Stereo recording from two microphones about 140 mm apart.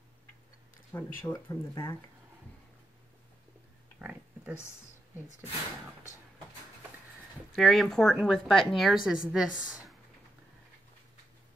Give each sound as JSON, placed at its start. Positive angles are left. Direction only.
{"t": 0.9, "sound": "speech", "side_deg": 15}
{"t": 4.0, "sound": "pig", "side_deg": -10}
{"t": 7.5, "sound": "a woman's voice", "side_deg": 0}